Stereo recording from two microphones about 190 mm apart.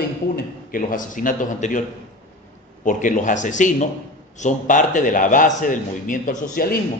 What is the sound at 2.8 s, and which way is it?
A man's voice, 45° left (ahead or behind).